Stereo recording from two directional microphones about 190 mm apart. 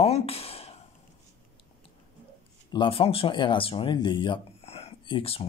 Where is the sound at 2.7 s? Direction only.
25° left (ahead or behind).